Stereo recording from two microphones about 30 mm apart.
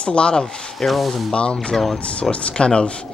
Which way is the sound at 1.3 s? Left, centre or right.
Left.